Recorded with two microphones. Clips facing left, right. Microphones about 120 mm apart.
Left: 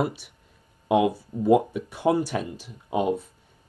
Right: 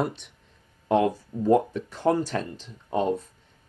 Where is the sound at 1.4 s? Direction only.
10° left (ahead or behind).